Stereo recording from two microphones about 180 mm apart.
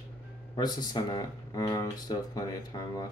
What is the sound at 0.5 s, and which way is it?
Speech, 25° left (ahead or behind).